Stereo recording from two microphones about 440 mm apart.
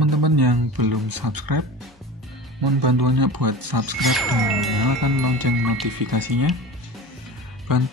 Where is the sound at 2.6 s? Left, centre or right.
Right.